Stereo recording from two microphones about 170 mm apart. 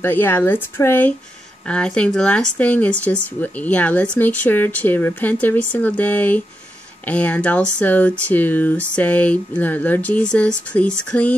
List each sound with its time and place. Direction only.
0.0 s speech: 10° left (ahead or behind)